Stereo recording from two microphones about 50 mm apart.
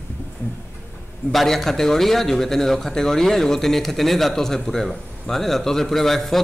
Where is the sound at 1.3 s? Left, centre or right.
Centre.